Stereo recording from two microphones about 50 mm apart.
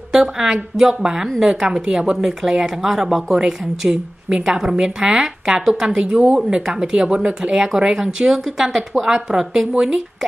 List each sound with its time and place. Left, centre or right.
0.1 s a woman's voice: centre